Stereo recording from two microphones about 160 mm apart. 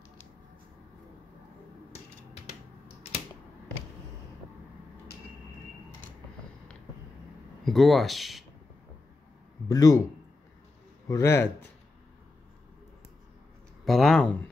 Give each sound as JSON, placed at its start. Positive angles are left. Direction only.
{"t": 7.6, "sound": "speech", "side_deg": 0}
{"t": 9.7, "sound": "a man's voice", "side_deg": 20}
{"t": 11.1, "sound": "a man's voice", "side_deg": 20}
{"t": 13.8, "sound": "speech", "side_deg": 0}